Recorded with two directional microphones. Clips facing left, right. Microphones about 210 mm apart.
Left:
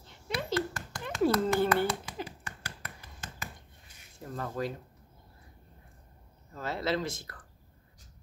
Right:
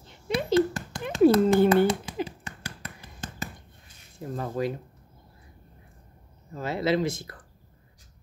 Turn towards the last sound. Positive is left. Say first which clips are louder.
# right 7 dB
turn(degrees=-15)  # may be behind; listen again after turning